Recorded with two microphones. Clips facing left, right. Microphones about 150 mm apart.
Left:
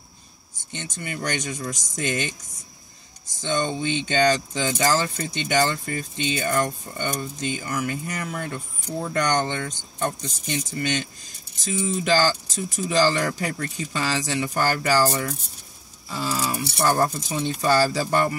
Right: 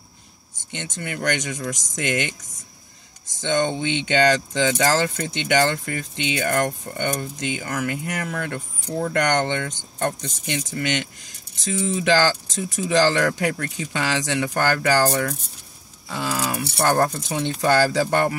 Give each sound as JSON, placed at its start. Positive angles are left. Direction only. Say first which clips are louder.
{"t": 0.7, "sound": "speech", "louder": "right 2 dB", "side_deg": -90}
{"t": 3.3, "sound": "speech", "louder": "right 3 dB", "side_deg": -80}
{"t": 11.7, "sound": "speech", "louder": "right 2 dB", "side_deg": -75}
{"t": 13.4, "sound": "speech", "louder": "right 4 dB", "side_deg": -90}